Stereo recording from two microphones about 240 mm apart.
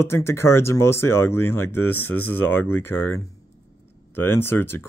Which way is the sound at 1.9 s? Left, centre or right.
Centre.